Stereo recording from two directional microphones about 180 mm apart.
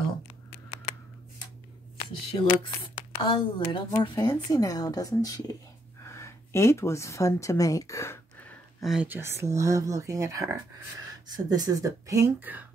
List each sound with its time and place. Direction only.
2.0 s a woman's voice: 35° left (ahead or behind)
3.3 s a woman's voice: 25° left (ahead or behind); by 8.9 s 10° left (ahead or behind)
8.9 s speech: 10° right (ahead or behind)